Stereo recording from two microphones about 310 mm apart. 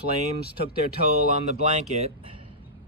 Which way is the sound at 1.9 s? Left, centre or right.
Centre.